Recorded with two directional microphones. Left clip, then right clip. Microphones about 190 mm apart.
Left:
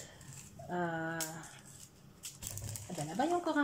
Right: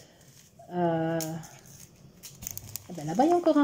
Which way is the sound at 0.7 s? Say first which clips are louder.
Right 9 dB; 30° right (ahead or behind).